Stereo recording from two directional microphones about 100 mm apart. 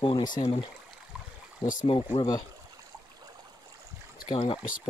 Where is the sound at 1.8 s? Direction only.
70° left (ahead or behind).